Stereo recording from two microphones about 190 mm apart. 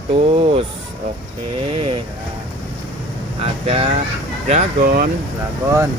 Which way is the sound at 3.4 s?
30° right (ahead or behind).